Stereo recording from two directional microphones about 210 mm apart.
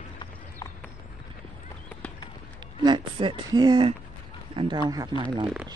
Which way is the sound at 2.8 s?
20° right (ahead or behind).